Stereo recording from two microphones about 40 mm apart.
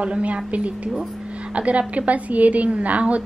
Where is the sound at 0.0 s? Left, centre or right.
Right.